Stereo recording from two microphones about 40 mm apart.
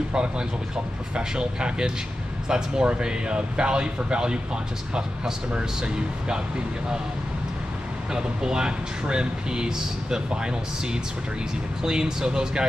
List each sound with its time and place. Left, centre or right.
0.1 s speech: right
5.5 s speech: right
8.1 s speech: centre